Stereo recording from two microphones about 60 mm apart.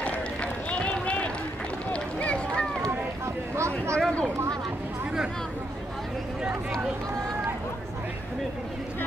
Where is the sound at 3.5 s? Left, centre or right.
Right.